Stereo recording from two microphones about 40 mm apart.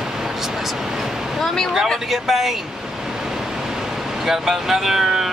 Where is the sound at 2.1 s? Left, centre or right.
Centre.